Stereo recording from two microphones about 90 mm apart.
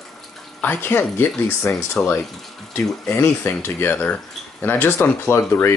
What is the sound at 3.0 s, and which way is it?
Speech, 25° left (ahead or behind).